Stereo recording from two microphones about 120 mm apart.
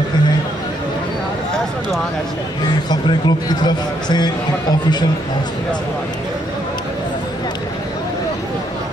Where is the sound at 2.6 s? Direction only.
35° left (ahead or behind).